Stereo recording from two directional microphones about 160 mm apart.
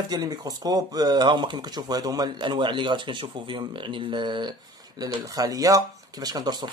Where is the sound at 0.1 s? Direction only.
25° right (ahead or behind).